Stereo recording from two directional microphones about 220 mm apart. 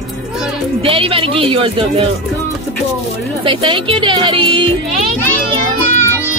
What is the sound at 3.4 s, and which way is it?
Speech, 20° right (ahead or behind).